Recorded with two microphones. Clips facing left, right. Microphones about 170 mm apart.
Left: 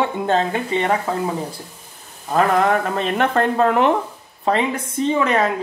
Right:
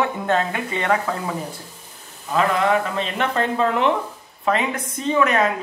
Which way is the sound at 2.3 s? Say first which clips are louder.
Left 2 dB; 50° left (ahead or behind).